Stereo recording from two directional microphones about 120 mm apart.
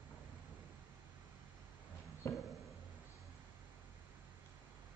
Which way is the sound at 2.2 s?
20° left (ahead or behind).